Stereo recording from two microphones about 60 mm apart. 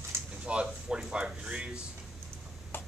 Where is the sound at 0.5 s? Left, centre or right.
Centre.